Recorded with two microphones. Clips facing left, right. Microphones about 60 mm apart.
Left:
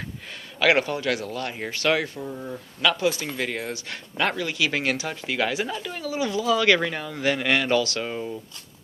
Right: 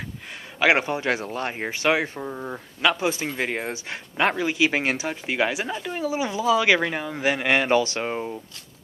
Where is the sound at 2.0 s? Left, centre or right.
Right.